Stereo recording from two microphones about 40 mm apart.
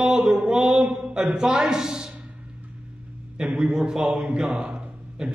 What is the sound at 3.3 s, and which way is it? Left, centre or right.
A man's voice, centre.